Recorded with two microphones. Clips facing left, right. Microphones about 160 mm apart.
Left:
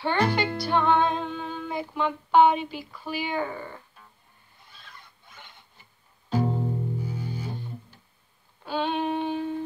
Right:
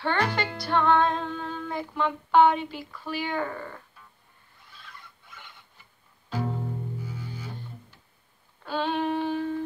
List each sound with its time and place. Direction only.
0.3 s music: centre (ahead or behind)
0.7 s female singing: 5° left (ahead or behind)
2.9 s speech: 10° left (ahead or behind)
6.3 s music: 30° left (ahead or behind)
8.6 s female singing: 5° left (ahead or behind)
9.0 s a sound: 20° left (ahead or behind)